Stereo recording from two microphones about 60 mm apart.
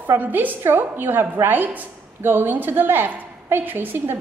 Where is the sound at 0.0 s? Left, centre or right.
Right.